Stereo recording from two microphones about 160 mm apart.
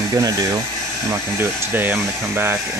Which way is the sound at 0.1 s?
20° right (ahead or behind).